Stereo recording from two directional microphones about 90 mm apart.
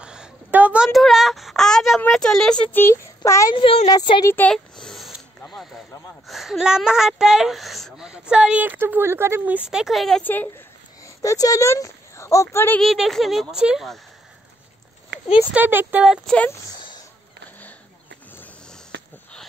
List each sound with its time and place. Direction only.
0.0 s a sound: 10° right (ahead or behind)
0.8 s a sound: 5° right (ahead or behind)
2.0 s speech: 5° left (ahead or behind)
2.7 s a woman's voice: 25° left (ahead or behind)
3.5 s a woman's voice: 75° left (ahead or behind)
3.9 s speech: 45° left (ahead or behind)
4.5 s speech: 10° left (ahead or behind)
6.2 s a woman's voice: centre (ahead or behind)
8.1 s speech: 10° right (ahead or behind); by 9.6 s 25° right (ahead or behind)
9.6 s speech: 5° right (ahead or behind)
10.2 s a woman's voice: 20° left (ahead or behind)
11.2 s speech: 40° left (ahead or behind)
12.8 s speech: centre (ahead or behind)
15.5 s speech: 20° right (ahead or behind)